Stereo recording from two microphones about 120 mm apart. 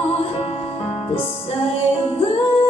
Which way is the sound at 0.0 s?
60° left (ahead or behind).